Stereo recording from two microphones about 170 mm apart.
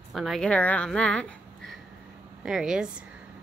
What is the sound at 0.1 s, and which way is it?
A woman's voice, centre (ahead or behind).